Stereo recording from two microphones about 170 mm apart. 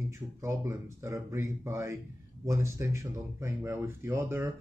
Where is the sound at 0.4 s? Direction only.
15° right (ahead or behind).